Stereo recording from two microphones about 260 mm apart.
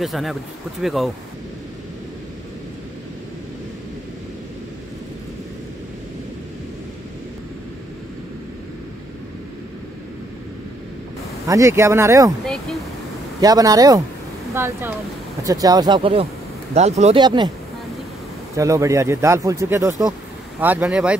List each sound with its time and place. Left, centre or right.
0.0 s speech: centre
11.4 s speech: centre
13.4 s speech: centre
18.6 s speech: centre